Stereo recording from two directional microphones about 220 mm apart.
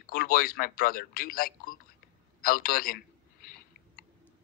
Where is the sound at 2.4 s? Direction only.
40° left (ahead or behind).